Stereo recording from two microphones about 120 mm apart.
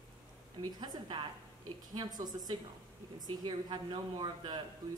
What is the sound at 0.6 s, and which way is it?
Speech, 40° right (ahead or behind).